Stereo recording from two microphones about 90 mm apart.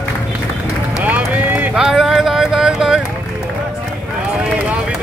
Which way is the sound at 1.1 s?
20° right (ahead or behind).